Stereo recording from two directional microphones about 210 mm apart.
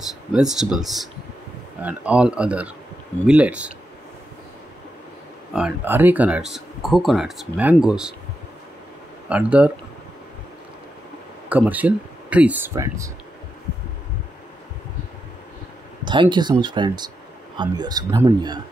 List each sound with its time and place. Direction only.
0.3 s speech: centre (ahead or behind)
5.5 s speech: 5° right (ahead or behind)
9.3 s speech: 5° right (ahead or behind)
11.4 s speech: 10° right (ahead or behind)
16.1 s speech: 20° right (ahead or behind)